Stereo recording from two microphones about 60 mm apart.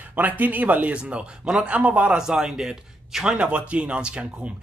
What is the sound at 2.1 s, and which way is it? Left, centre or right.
A man's voice, centre.